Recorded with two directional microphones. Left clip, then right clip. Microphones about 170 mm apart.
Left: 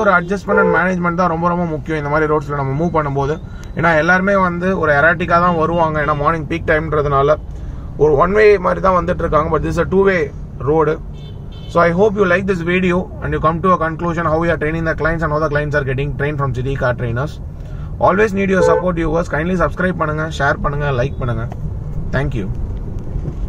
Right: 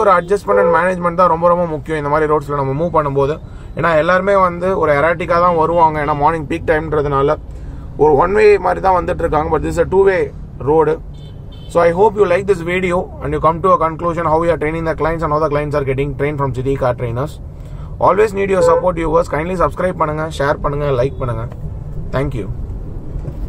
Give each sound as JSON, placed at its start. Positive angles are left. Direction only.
{"t": 0.0, "sound": "a man's voice", "side_deg": -35}